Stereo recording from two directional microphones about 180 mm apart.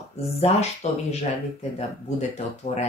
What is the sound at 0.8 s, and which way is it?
Speech, 40° left (ahead or behind).